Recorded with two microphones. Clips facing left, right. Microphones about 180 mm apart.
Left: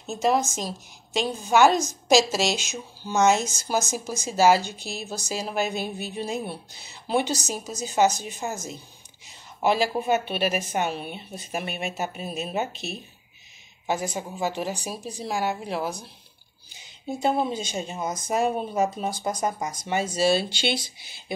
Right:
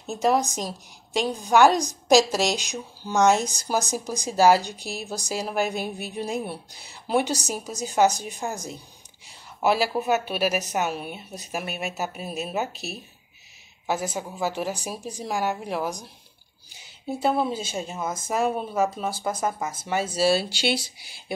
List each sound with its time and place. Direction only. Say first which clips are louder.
0.0 s speech: right 1 dB; 15° right (ahead or behind)
17.9 s speech: left 1 dB; 15° left (ahead or behind)
18.2 s speech: left 1 dB; centre (ahead or behind)